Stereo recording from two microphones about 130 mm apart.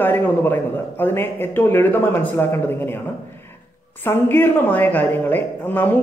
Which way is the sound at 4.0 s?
15° left (ahead or behind).